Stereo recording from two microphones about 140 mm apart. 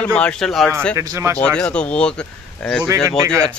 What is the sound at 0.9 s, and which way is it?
Speech, 25° right (ahead or behind).